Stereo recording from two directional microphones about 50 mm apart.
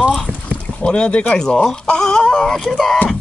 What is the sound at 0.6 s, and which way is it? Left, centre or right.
Speech, left.